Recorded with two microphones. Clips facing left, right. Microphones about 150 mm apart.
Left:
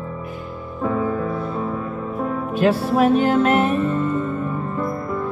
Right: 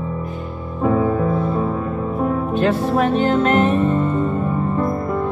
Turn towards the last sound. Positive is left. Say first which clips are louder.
# right 1 dB
turn(degrees=10)  # may be behind; listen again after turning